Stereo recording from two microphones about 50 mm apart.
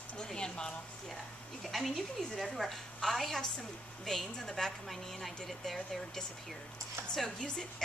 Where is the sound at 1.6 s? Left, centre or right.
Centre.